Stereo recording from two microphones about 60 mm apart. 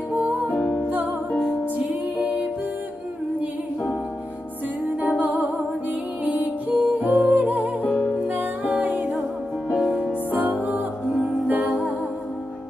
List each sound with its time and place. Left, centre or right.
0.1 s music: right
0.6 s music: centre
1.8 s music: right
4.8 s music: right